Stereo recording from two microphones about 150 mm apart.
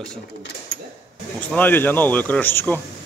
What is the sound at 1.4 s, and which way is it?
Speech, 10° left (ahead or behind).